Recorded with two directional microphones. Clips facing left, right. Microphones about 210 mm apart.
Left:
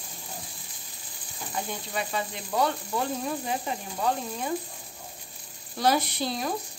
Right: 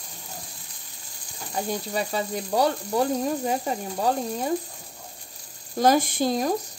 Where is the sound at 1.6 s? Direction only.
40° right (ahead or behind).